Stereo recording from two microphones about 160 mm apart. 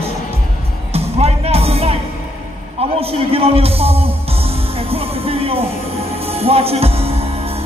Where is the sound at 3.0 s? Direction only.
40° right (ahead or behind).